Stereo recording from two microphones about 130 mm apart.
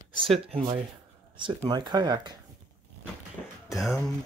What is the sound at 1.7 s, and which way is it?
Speech, 35° right (ahead or behind).